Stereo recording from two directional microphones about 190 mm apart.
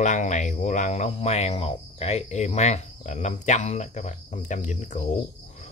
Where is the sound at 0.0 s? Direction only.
40° left (ahead or behind).